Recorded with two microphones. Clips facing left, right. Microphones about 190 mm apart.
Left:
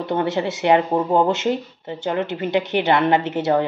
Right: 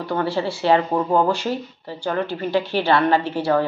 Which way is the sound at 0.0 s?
20° left (ahead or behind).